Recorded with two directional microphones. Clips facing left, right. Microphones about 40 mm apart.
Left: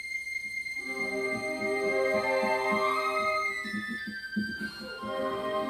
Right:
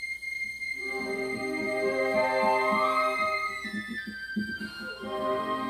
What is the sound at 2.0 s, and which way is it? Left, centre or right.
Music, right.